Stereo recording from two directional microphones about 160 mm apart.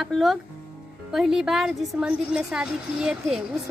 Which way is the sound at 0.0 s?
Centre (ahead or behind).